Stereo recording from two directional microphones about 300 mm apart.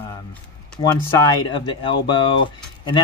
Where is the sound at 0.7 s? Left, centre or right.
Centre.